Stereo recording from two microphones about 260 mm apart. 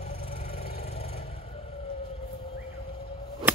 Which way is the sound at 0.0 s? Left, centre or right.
Left.